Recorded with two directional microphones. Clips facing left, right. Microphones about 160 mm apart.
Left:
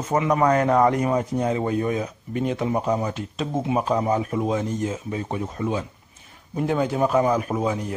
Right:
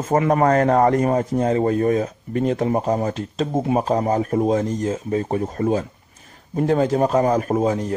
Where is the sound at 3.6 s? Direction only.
45° right (ahead or behind).